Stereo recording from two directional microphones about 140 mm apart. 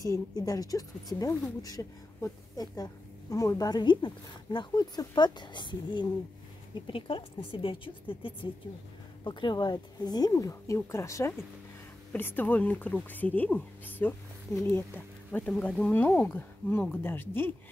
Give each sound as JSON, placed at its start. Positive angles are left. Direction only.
{"t": 0.0, "sound": "a woman's voice", "side_deg": 25}